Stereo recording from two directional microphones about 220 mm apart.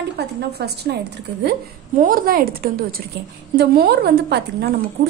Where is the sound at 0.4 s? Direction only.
45° right (ahead or behind).